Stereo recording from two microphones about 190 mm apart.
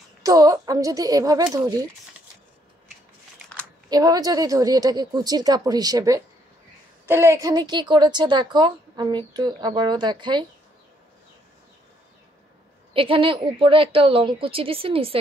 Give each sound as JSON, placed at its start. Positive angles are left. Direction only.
{"t": 0.2, "sound": "a woman's voice", "side_deg": -20}
{"t": 3.9, "sound": "a woman's voice", "side_deg": -20}
{"t": 12.9, "sound": "a woman's voice", "side_deg": -30}